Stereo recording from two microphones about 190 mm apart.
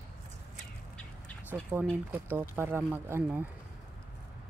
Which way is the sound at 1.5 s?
10° right (ahead or behind).